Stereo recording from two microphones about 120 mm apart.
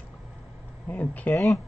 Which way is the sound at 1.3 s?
25° left (ahead or behind).